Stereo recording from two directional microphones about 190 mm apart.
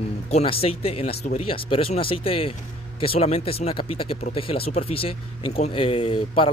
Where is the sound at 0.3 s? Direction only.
30° left (ahead or behind).